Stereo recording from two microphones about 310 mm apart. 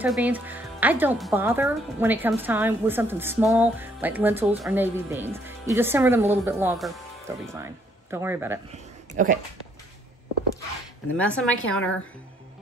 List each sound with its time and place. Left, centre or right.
0.0 s a woman's voice: centre
9.1 s speech: right
11.1 s a woman's voice: centre